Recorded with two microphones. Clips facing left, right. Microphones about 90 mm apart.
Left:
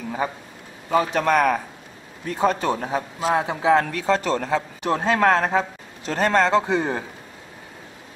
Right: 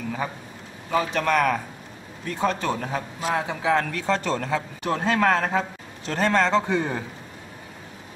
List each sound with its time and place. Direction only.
0.8 s a man's voice: 10° left (ahead or behind)